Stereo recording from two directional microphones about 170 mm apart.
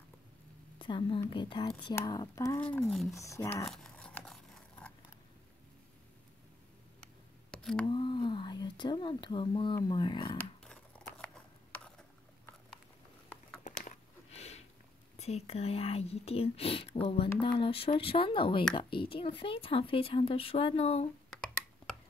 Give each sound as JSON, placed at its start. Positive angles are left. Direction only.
{"t": 0.7, "sound": "a woman's voice", "side_deg": 30}
{"t": 3.2, "sound": "speech", "side_deg": 15}
{"t": 3.7, "sound": "scissors", "side_deg": 5}
{"t": 7.5, "sound": "a sound", "side_deg": 5}
{"t": 7.8, "sound": "speech", "side_deg": 30}
{"t": 10.6, "sound": "tearing", "side_deg": 5}
{"t": 13.7, "sound": "a sound", "side_deg": 45}
{"t": 15.1, "sound": "a woman's voice", "side_deg": 40}